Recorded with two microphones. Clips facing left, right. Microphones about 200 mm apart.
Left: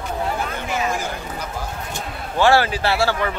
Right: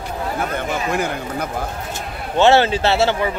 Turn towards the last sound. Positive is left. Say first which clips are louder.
# right 3 dB
turn(degrees=-20)  # may be behind; listen again after turning